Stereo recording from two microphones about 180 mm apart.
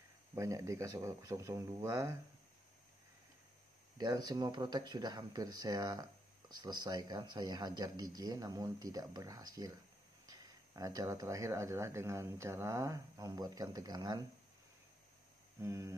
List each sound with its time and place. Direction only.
0.3 s speech: 15° right (ahead or behind)
4.0 s speech: 20° right (ahead or behind)
15.6 s speech: 15° right (ahead or behind)